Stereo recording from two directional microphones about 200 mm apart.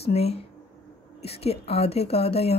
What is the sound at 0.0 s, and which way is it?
A woman's voice, 30° left (ahead or behind).